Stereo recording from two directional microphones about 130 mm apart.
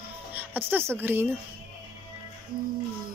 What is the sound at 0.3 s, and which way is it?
Speech, 15° right (ahead or behind).